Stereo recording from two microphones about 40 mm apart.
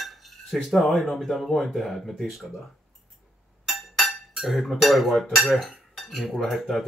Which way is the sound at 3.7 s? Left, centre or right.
Centre.